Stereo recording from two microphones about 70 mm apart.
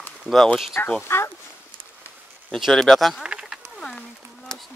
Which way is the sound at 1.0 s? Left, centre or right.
Left.